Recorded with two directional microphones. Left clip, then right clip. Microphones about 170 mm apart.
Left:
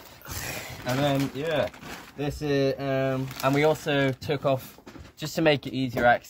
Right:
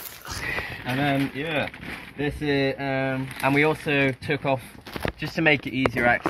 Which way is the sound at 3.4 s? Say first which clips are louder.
Right 1 dB; 40° left (ahead or behind).